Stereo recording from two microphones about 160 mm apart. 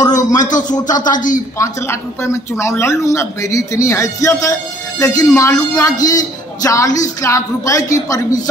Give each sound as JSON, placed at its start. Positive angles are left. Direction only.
{"t": 0.0, "sound": "a sound", "side_deg": 25}
{"t": 0.4, "sound": "a woman's voice", "side_deg": 50}
{"t": 1.6, "sound": "speech", "side_deg": 15}